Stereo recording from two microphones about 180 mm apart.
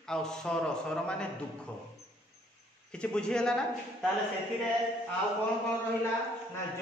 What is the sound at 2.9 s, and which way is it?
Speech, 5° left (ahead or behind).